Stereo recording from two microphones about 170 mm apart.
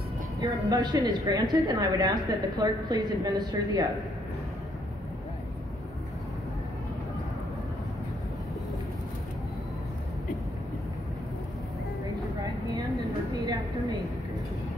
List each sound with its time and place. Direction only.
0.4 s a woman's voice: 20° right (ahead or behind)
13.3 s vehicle: 20° right (ahead or behind)